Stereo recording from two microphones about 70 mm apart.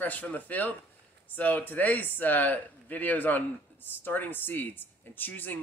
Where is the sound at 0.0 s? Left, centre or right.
Left.